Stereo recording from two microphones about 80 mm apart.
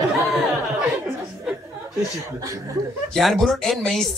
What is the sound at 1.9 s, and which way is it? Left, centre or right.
Speech, right.